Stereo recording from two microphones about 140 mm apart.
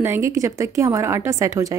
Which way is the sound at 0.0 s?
20° right (ahead or behind).